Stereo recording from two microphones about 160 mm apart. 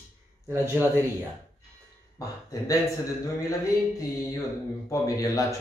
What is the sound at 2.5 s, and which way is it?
Speech, 25° left (ahead or behind).